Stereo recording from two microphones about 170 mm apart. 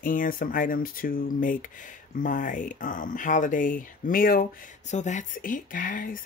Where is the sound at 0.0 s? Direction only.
50° left (ahead or behind).